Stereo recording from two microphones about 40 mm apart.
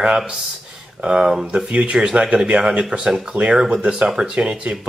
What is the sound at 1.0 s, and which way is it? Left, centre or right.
Speech, right.